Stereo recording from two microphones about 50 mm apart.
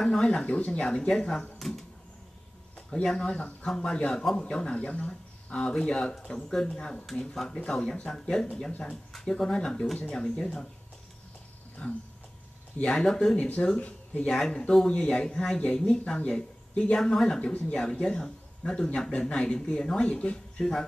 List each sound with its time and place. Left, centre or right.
0.0 s speech: centre
2.9 s speech: centre
6.8 s speech: left
11.8 s speech: left
13.7 s speech: left
14.2 s speech: centre; by 20.6 s left